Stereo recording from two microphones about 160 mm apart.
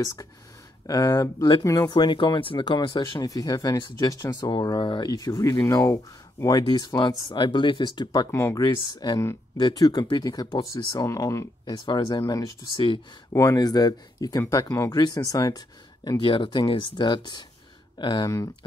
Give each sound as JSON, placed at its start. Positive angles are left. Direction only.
{"t": 0.0, "sound": "speech", "side_deg": 20}
{"t": 12.7, "sound": "speech", "side_deg": 30}
{"t": 13.3, "sound": "speech", "side_deg": 20}